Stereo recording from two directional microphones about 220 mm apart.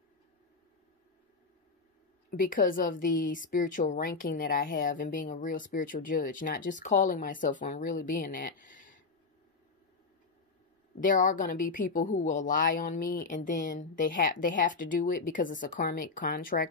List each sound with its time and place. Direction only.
2.3 s a woman's voice: 40° left (ahead or behind)
11.0 s a woman's voice: 35° left (ahead or behind)